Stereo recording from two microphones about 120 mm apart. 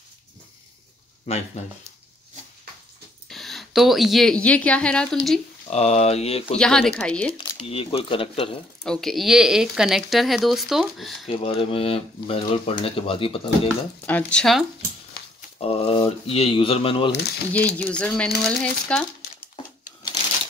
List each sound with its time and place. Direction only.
1.2 s speech: 60° left (ahead or behind)
3.3 s a woman's voice: centre (ahead or behind)
5.7 s speech: 65° left (ahead or behind)
6.6 s speech: 5° left (ahead or behind)
7.3 s speech: 50° left (ahead or behind)
8.8 s speech: 5° left (ahead or behind)
11.2 s speech: 55° left (ahead or behind)
14.0 s speech: 15° left (ahead or behind)
14.4 s speech: centre (ahead or behind)
15.6 s speech: 50° left (ahead or behind)
17.5 s speech: 10° left (ahead or behind)